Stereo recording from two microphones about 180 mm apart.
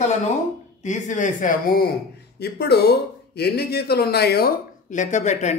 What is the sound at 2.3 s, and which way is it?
Speech, 65° left (ahead or behind).